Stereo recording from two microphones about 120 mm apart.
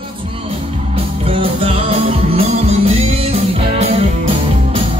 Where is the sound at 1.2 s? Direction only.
55° right (ahead or behind).